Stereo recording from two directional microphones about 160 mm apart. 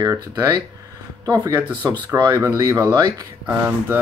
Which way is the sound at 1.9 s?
25° right (ahead or behind).